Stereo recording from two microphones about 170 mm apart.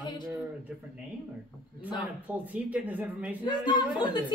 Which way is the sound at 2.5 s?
10° right (ahead or behind).